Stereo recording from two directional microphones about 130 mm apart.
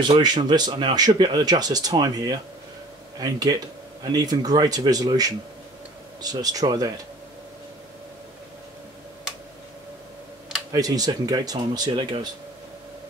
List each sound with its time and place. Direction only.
0.0 s speech: 35° right (ahead or behind)
10.7 s speech: 30° right (ahead or behind)